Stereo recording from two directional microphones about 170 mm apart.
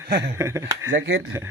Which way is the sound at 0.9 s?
90° right.